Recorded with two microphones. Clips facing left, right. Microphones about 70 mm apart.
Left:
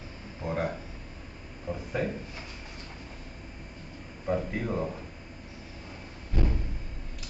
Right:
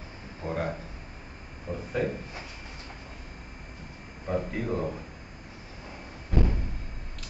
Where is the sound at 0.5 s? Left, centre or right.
Centre.